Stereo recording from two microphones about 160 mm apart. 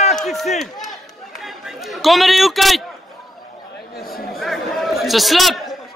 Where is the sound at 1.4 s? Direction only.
Centre (ahead or behind).